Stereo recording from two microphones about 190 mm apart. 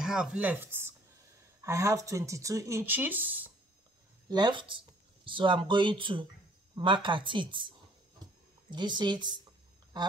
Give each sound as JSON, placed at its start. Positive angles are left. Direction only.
{"t": 0.0, "sound": "speech", "side_deg": -5}
{"t": 4.3, "sound": "speech", "side_deg": -25}
{"t": 8.2, "sound": "a sound", "side_deg": -20}
{"t": 8.6, "sound": "speech", "side_deg": -25}